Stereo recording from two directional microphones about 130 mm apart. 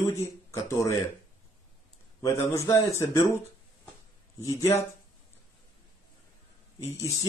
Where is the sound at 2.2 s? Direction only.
20° left (ahead or behind).